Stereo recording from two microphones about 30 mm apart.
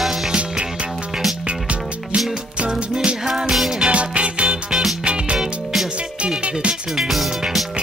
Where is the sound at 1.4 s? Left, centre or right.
Right.